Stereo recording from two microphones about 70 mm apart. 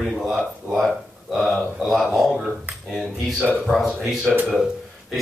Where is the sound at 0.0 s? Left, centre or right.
Centre.